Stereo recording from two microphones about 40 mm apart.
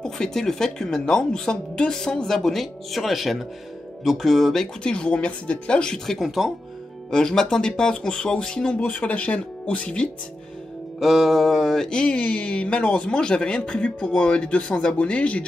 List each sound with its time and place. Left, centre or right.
0.0 s speech: centre
4.8 s mantra: left
6.2 s speech: centre
7.1 s mantra: centre
8.8 s speech: left
11.0 s mantra: centre; by 15.4 s left